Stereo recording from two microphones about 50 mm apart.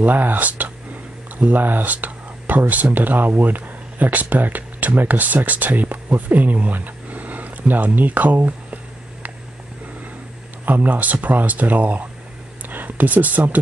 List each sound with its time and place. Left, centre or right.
0.0 s speech: right
10.6 s speech: right